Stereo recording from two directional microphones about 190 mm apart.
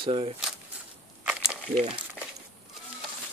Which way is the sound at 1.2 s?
5° right (ahead or behind).